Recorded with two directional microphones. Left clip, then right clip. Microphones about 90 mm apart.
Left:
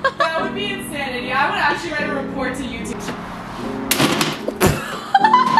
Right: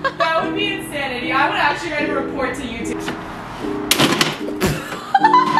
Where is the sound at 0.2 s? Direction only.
25° left (ahead or behind).